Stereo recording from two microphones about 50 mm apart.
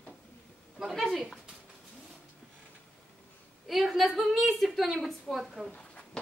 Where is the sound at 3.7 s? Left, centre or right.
Centre.